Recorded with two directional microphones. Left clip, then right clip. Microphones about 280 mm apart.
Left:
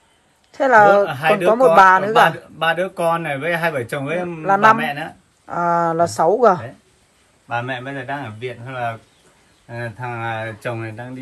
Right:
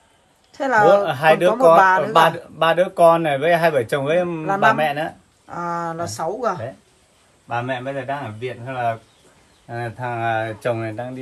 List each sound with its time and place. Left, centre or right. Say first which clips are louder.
0.5 s a woman's voice: left 3 dB; centre
1.0 s speech: right 2 dB; right
1.3 s speech: even; centre
2.3 s speech: right 2 dB; right
4.4 s speech: left 7 dB; centre
4.7 s speech: right 3 dB; right
5.5 s speech: left 7 dB; centre
7.4 s speech: even; right